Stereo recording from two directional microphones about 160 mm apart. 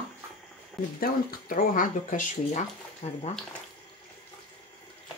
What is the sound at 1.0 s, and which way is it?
Speech, 60° left (ahead or behind).